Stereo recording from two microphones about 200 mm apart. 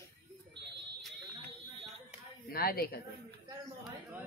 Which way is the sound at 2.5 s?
50° left (ahead or behind).